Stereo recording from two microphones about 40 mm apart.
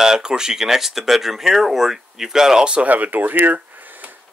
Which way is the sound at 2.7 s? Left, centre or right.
Right.